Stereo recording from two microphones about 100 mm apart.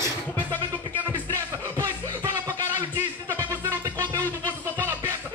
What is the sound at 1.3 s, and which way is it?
Music, 30° right (ahead or behind).